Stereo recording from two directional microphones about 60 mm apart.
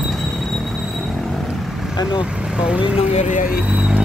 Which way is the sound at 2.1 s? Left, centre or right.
Centre.